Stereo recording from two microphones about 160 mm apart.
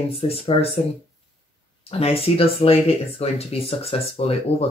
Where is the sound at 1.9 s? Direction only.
35° left (ahead or behind).